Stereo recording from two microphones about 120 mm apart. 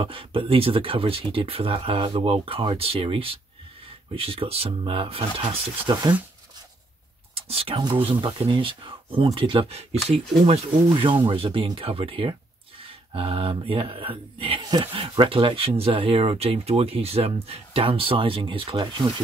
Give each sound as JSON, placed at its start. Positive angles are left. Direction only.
{"t": 0.0, "sound": "speech", "side_deg": -50}
{"t": 5.9, "sound": "speech", "side_deg": -40}
{"t": 7.3, "sound": "speech", "side_deg": -50}
{"t": 15.0, "sound": "speech", "side_deg": -45}